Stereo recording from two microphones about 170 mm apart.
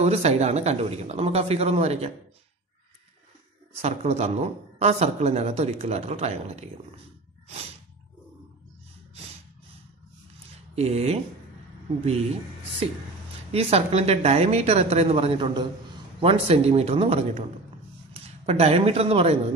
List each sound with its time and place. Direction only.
0.0 s speech: 40° right (ahead or behind)
3.8 s speech: 40° right (ahead or behind)
10.7 s speech: 40° right (ahead or behind)
13.5 s speech: 35° right (ahead or behind)
18.4 s speech: 40° right (ahead or behind)